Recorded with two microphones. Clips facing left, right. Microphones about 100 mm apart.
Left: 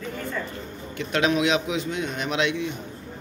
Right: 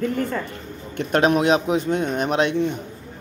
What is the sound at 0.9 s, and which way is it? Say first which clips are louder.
A man's voice: right 5 dB; 50° right (ahead or behind).